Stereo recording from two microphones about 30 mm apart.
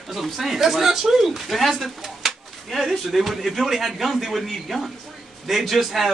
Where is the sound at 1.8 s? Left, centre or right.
Centre.